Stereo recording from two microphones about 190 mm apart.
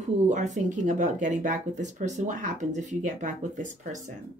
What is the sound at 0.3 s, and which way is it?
Speech, 40° right (ahead or behind).